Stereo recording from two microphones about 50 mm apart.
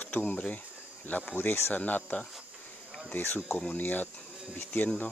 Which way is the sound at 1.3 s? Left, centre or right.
Left.